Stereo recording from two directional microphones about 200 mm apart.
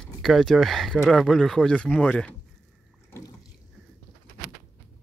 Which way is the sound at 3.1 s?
20° left (ahead or behind).